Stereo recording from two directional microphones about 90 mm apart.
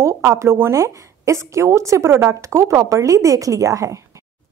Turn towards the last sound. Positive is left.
turn(degrees=-40)  # may be behind; listen again after turning